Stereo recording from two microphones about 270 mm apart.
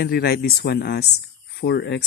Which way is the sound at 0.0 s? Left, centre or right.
Left.